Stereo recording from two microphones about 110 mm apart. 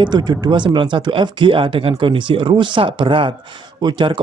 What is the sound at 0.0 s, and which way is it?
Speech, 40° right (ahead or behind).